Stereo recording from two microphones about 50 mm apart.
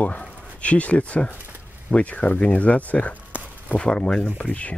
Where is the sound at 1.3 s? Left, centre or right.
Right.